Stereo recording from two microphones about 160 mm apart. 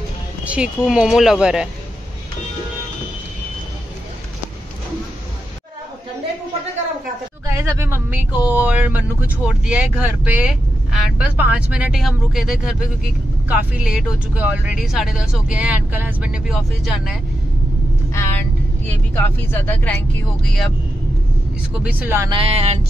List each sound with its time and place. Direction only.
0.5 s speech: 5° right (ahead or behind)
7.4 s speech: 20° right (ahead or behind); by 17.2 s centre (ahead or behind)
18.1 s vehicle: 15° left (ahead or behind)
18.9 s speech: 15° left (ahead or behind)
21.8 s speech: 10° right (ahead or behind)
22.3 s speech: 35° right (ahead or behind)